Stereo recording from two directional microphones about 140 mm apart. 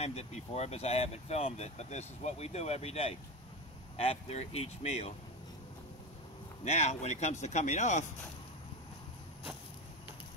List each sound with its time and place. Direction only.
0.0 s speech: 50° left (ahead or behind)
6.6 s speech: 55° left (ahead or behind)